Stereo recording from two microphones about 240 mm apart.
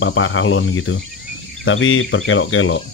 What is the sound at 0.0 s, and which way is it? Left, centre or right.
Speech, left.